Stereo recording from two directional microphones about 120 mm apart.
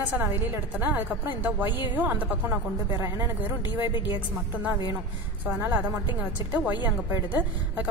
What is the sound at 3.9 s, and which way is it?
Speech, 40° left (ahead or behind).